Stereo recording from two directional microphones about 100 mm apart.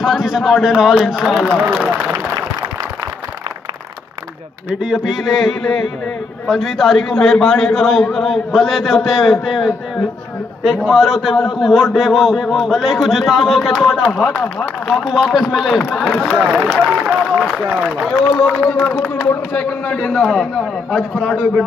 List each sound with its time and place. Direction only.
0.0 s a man's voice: 5° right (ahead or behind)
4.8 s a man's voice: 5° right (ahead or behind)
14.3 s speech: 15° left (ahead or behind)
14.9 s a man's voice: centre (ahead or behind)
16.1 s speech: 10° left (ahead or behind)
16.3 s a man's voice: 10° right (ahead or behind)
18.4 s a man's voice: 15° left (ahead or behind); by 21.6 s 5° right (ahead or behind)